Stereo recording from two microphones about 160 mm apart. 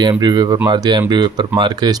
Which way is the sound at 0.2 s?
25° right (ahead or behind).